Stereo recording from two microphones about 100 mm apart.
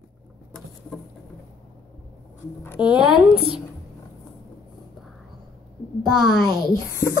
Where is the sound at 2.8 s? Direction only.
10° right (ahead or behind).